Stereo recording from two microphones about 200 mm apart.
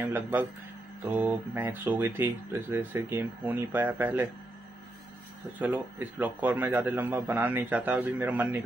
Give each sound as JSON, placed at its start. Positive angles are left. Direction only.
{"t": 0.0, "sound": "speech", "side_deg": -10}
{"t": 5.6, "sound": "speech", "side_deg": -10}